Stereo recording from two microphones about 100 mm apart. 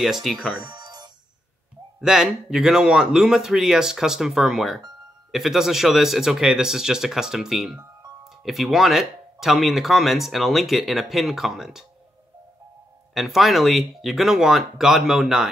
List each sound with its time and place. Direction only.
0.0 s speech: centre (ahead or behind)
0.6 s music: 45° right (ahead or behind)
2.0 s speech: 5° right (ahead or behind)
13.1 s speech: centre (ahead or behind)